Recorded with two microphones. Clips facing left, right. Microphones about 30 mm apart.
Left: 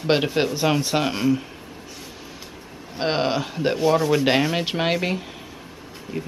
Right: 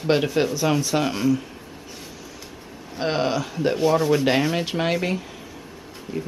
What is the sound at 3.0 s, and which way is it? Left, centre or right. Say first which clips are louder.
Speech: left 1 dB; left.